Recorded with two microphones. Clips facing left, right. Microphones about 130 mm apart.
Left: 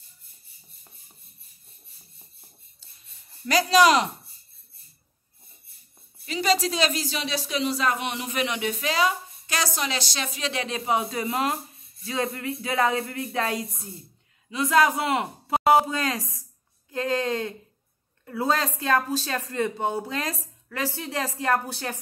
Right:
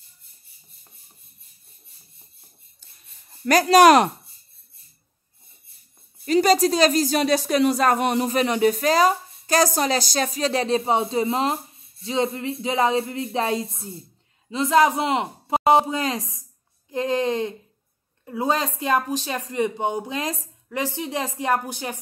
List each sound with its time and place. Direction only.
3.4 s speech: 50° right (ahead or behind)
6.2 s a man's voice: 45° right (ahead or behind); by 22.0 s 15° right (ahead or behind)